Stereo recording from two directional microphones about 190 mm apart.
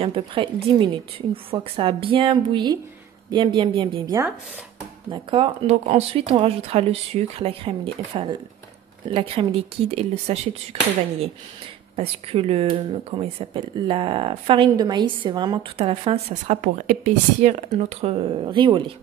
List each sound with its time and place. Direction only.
0.0 s speech: 25° right (ahead or behind)
12.0 s speech: 30° right (ahead or behind)
16.6 s speech: 45° right (ahead or behind); by 18.9 s 25° right (ahead or behind)